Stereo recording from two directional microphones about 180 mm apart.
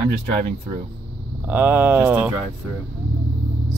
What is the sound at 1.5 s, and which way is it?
Speech, 10° right (ahead or behind).